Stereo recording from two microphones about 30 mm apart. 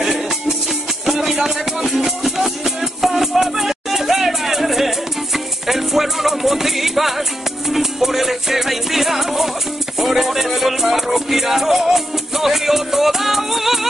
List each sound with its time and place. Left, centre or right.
0.0 s music: centre
1.3 s music: centre